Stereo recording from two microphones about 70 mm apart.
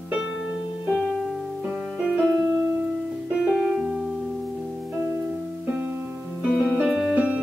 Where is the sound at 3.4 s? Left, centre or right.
Centre.